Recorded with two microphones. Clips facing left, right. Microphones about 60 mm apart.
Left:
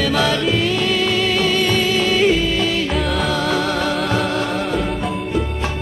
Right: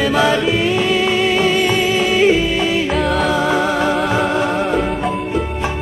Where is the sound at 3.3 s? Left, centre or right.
Centre.